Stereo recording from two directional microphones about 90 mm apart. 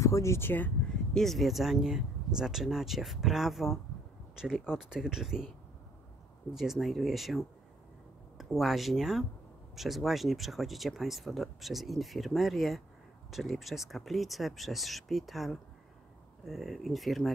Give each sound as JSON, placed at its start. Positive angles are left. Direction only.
{"t": 0.0, "sound": "speech", "side_deg": 35}
{"t": 1.1, "sound": "speech", "side_deg": 5}
{"t": 6.5, "sound": "speech", "side_deg": -5}